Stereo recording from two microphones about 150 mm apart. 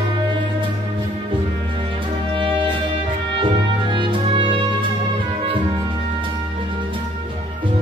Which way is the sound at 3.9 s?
35° right (ahead or behind).